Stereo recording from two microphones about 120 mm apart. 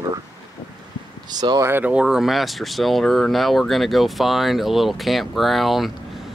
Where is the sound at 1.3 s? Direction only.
35° right (ahead or behind).